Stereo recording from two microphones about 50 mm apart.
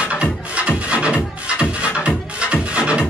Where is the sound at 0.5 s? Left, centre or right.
Right.